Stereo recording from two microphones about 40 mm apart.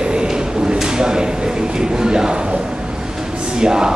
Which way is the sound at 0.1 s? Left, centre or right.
Right.